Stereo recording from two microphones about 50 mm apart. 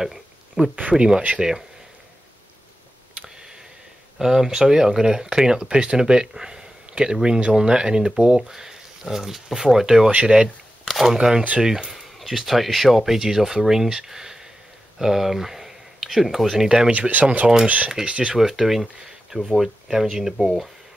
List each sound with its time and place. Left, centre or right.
0.0 s a sound: centre
0.7 s speech: right
1.3 s speech: centre
3.2 s a sound: centre
4.2 s speech: centre
10.9 s a sound: centre
11.1 s speech: centre
17.1 s speech: right
18.3 s speech: centre
20.4 s speech: centre